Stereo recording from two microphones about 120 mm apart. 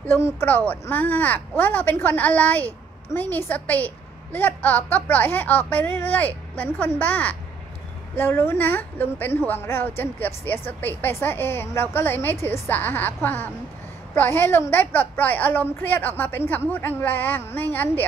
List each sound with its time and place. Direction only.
0.0 s a woman's voice: 20° left (ahead or behind)